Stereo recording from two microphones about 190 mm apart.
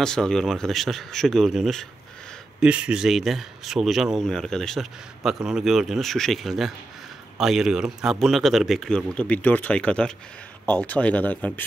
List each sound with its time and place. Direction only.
0.0 s speech: 5° left (ahead or behind)